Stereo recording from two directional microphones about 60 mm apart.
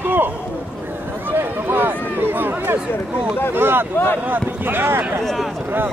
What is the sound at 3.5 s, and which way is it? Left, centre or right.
Speech, right.